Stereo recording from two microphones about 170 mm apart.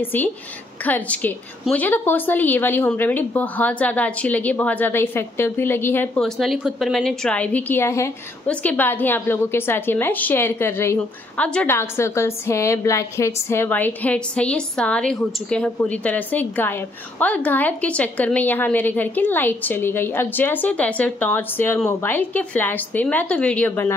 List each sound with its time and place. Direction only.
0.0 s a woman's voice: 10° left (ahead or behind)